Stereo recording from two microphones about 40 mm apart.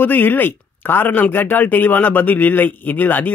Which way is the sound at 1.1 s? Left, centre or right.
Left.